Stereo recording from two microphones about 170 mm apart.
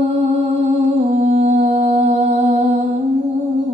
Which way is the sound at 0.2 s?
40° right (ahead or behind).